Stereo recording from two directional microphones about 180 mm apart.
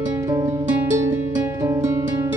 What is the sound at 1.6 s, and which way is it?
Music, 15° right (ahead or behind).